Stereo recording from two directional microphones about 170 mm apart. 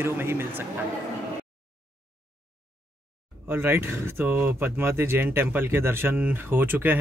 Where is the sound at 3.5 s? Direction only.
15° right (ahead or behind).